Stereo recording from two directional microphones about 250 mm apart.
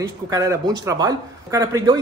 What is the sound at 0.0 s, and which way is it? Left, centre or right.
Speech, centre.